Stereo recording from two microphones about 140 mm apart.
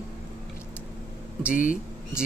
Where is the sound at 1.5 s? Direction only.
75° left (ahead or behind).